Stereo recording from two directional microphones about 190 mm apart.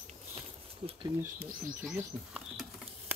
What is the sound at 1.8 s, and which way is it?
Bird, 5° right (ahead or behind).